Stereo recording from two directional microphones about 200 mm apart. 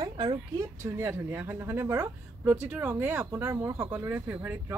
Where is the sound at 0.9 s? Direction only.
10° right (ahead or behind).